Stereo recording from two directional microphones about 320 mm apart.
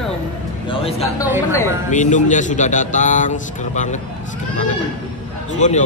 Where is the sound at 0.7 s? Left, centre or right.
Centre.